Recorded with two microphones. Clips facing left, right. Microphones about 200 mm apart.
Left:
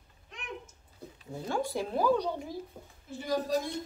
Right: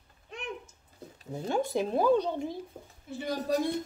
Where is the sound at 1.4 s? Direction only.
20° right (ahead or behind).